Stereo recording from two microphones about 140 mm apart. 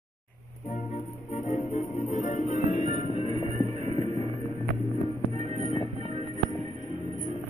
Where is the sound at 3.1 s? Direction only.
30° left (ahead or behind).